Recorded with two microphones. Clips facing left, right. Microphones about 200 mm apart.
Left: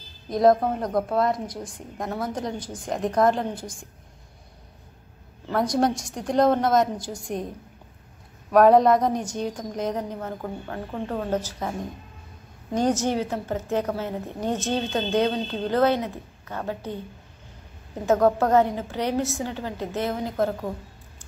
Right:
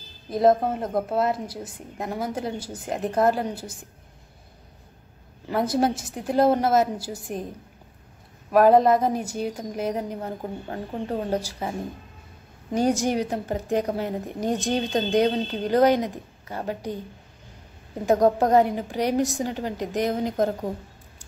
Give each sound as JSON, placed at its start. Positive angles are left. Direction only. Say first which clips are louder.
{"t": 0.3, "sound": "a woman's voice", "louder": "left 1 dB", "side_deg": 0}
{"t": 5.6, "sound": "a woman's voice", "louder": "even", "side_deg": -5}
{"t": 8.5, "sound": "a woman's voice", "louder": "left 1 dB", "side_deg": 0}
{"t": 10.4, "sound": "a woman's voice", "louder": "even", "side_deg": -20}
{"t": 12.7, "sound": "a woman's voice", "louder": "right 1 dB", "side_deg": -10}
{"t": 18.2, "sound": "a woman's voice", "louder": "right 1 dB", "side_deg": -15}